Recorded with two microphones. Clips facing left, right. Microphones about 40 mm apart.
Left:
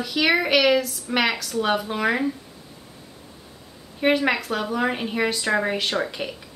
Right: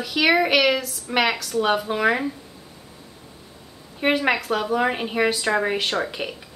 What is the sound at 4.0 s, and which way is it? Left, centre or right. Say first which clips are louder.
Speech: even; centre.